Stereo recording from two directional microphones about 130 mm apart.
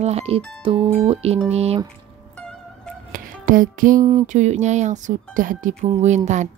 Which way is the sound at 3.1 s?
90° right.